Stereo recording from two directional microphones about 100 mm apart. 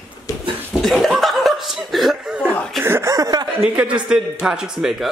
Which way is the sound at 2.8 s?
25° right (ahead or behind).